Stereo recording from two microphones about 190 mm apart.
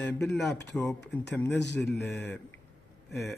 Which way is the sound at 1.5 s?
65° left (ahead or behind).